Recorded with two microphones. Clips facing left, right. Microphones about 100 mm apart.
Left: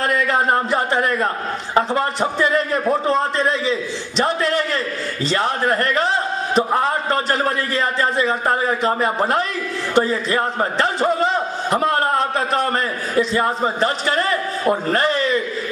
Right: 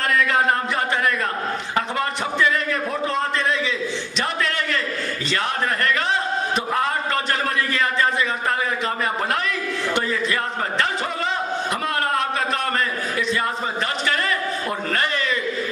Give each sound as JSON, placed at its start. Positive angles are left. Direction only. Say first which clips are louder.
{"t": 0.3, "sound": "a man's voice", "louder": "left 3 dB", "side_deg": 35}
{"t": 11.7, "sound": "a sound", "louder": "left 8 dB", "side_deg": 35}
{"t": 14.9, "sound": "a man's voice", "louder": "left 5 dB", "side_deg": 35}